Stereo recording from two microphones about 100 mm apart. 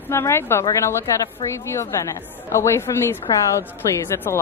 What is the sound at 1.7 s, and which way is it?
A woman's voice, 30° left (ahead or behind).